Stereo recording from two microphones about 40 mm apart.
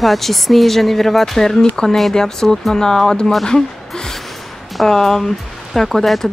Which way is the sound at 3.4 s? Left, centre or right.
Centre.